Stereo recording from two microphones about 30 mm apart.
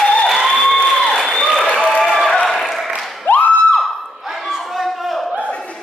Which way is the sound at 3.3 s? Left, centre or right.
Left.